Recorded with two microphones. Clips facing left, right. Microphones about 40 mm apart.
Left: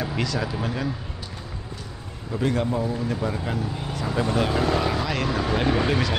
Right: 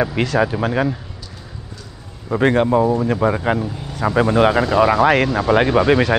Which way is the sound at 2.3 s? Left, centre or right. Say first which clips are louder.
Right 9 dB; right.